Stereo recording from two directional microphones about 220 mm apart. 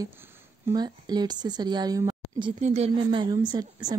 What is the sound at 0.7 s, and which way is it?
Speech, 20° right (ahead or behind).